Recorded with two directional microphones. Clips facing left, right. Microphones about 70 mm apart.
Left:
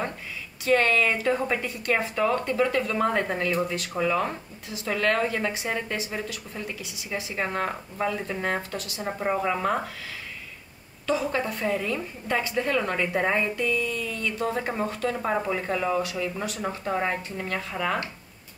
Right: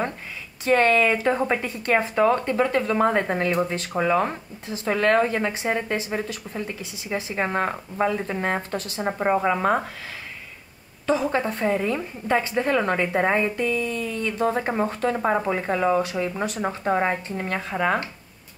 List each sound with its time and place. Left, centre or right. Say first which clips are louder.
0.7 s speech: right 3 dB; right
11.1 s speech: right 4 dB; right